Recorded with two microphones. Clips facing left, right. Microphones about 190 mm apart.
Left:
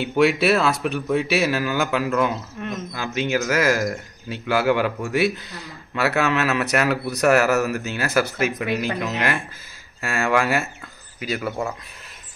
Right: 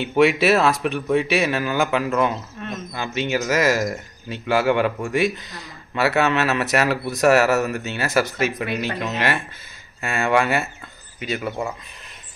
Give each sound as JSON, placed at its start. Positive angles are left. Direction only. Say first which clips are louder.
{"t": 0.0, "sound": "speech", "louder": "right 1 dB", "side_deg": 0}
{"t": 2.6, "sound": "wild animals", "louder": "left 2 dB", "side_deg": 15}
{"t": 3.0, "sound": "speech", "louder": "even", "side_deg": 0}
{"t": 11.2, "sound": "speech", "louder": "even", "side_deg": -20}